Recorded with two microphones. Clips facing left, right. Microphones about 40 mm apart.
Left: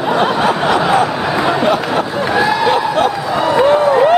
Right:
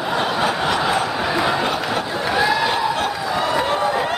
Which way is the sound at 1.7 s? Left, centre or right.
Centre.